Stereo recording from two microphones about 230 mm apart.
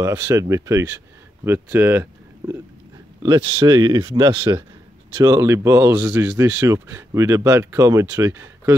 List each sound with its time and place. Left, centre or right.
0.0 s speech: centre